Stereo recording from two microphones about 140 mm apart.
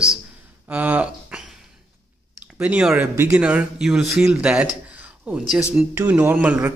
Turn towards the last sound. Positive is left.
turn(degrees=-10)  # may be behind; listen again after turning